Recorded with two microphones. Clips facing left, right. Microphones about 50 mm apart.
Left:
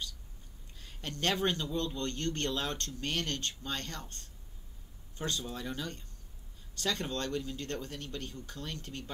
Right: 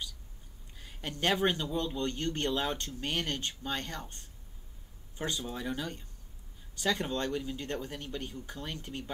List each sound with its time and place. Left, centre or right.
0.7 s a man's voice: centre